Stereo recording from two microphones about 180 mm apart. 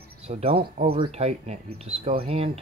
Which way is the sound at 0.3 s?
35° right (ahead or behind).